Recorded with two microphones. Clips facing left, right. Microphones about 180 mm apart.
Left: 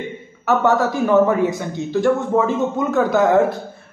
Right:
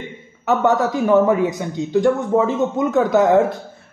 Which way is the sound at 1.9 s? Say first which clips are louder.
Right 1 dB; 20° right (ahead or behind).